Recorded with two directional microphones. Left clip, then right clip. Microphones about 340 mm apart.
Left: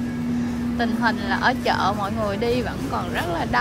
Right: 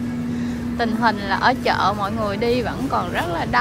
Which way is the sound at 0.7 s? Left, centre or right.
Centre.